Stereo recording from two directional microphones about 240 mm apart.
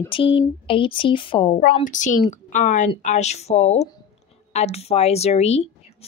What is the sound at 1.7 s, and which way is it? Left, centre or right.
A woman's voice, left.